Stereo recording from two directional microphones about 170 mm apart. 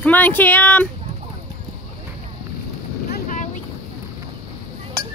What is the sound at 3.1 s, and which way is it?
Boat, 50° left (ahead or behind).